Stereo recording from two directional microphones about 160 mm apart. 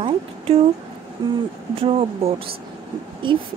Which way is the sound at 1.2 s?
30° right (ahead or behind).